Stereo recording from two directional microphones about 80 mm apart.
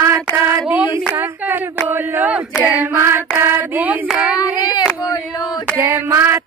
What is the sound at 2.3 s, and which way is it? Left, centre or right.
Hands, centre.